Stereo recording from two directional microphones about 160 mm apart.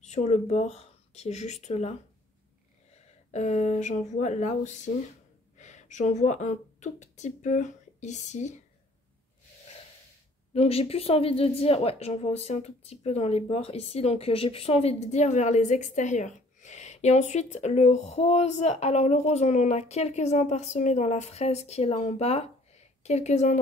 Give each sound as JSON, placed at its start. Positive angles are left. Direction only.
{"t": 0.0, "sound": "speech", "side_deg": 45}
{"t": 10.5, "sound": "a woman's voice", "side_deg": 40}